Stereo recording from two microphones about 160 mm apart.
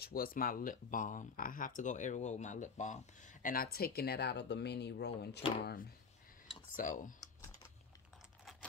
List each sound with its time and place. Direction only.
0.0 s speech: 65° left (ahead or behind); by 3.0 s 50° left (ahead or behind)
3.4 s speech: 70° left (ahead or behind); by 5.9 s 90° left
6.8 s speech: 55° left (ahead or behind)